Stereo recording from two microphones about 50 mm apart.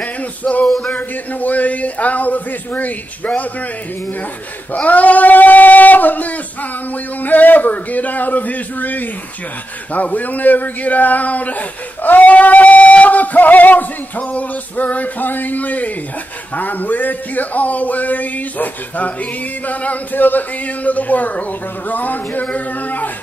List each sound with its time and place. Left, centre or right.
0.0 s music: left
0.9 s speech: left
4.7 s speech: left